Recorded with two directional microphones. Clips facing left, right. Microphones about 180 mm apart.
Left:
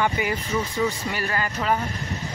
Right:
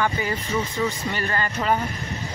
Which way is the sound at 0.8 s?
5° left (ahead or behind).